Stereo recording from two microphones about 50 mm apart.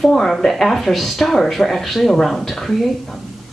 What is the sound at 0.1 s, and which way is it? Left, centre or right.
Speech, centre.